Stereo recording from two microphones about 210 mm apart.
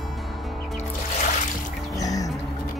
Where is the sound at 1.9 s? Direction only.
15° left (ahead or behind).